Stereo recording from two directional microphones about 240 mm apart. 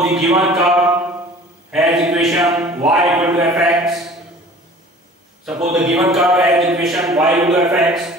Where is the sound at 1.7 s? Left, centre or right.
Centre.